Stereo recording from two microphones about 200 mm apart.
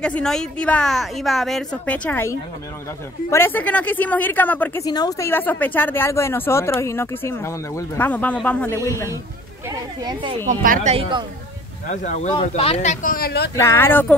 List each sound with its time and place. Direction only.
0.0 s a woman's voice: 5° left (ahead or behind)
9.7 s speech: 20° right (ahead or behind)
10.5 s speech: 40° right (ahead or behind); by 11.2 s 25° right (ahead or behind)
11.9 s speech: 35° left (ahead or behind)
13.6 s speech: 10° left (ahead or behind)